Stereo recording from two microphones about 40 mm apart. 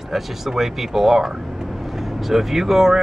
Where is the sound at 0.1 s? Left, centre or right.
Centre.